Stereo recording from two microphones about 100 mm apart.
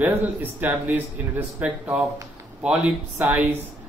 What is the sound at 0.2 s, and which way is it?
Speech, 15° right (ahead or behind).